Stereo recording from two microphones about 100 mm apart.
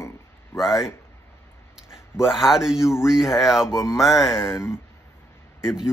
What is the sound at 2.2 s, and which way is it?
Speech, 5° right (ahead or behind).